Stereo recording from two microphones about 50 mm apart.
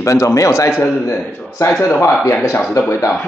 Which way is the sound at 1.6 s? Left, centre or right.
Left.